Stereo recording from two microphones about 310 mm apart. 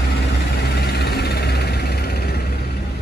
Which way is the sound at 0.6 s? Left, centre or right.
Left.